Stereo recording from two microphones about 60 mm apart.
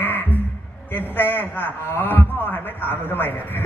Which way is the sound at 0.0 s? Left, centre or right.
Left.